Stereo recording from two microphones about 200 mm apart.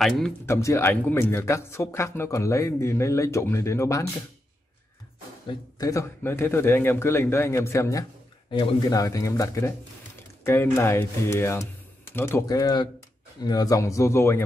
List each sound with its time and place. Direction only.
0.5 s speech: 15° left (ahead or behind)
5.5 s speech: 15° left (ahead or behind)